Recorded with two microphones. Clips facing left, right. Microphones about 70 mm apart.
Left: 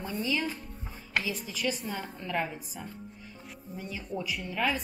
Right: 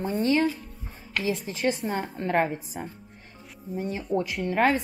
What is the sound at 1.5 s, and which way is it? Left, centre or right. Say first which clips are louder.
Speech: right 6 dB; right.